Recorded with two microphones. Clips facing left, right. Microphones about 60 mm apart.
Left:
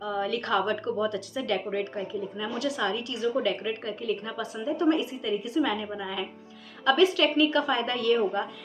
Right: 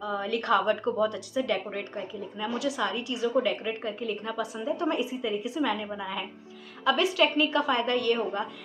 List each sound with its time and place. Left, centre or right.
0.0 s speech: centre